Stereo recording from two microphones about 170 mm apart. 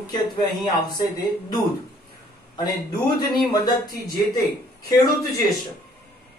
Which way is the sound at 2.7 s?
25° left (ahead or behind).